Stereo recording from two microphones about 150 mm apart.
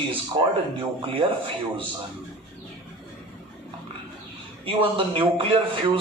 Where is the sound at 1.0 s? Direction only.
35° right (ahead or behind).